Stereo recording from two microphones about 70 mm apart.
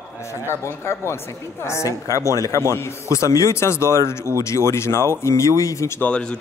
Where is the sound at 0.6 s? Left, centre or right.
Left.